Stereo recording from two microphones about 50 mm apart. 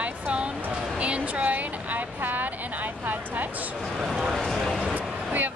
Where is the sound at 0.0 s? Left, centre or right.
Right.